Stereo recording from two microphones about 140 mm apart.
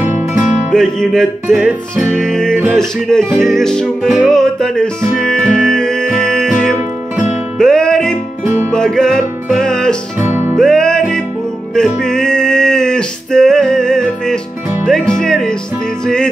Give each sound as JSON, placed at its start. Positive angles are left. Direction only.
{"t": 0.0, "sound": "music", "side_deg": -15}
{"t": 0.7, "sound": "music", "side_deg": 5}
{"t": 10.1, "sound": "music", "side_deg": -15}
{"t": 10.6, "sound": "music", "side_deg": 5}